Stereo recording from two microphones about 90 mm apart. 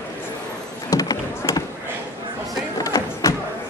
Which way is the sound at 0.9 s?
45° left (ahead or behind).